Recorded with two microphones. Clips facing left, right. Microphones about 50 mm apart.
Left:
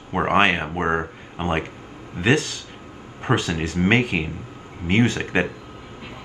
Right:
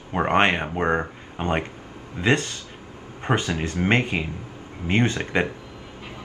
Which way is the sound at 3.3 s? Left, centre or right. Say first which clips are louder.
Left 2 dB; centre.